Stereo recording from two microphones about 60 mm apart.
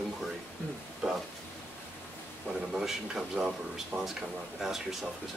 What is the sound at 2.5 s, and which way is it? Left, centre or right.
Speech, centre.